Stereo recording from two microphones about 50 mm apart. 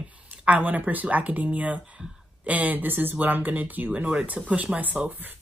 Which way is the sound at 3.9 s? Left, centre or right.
Right.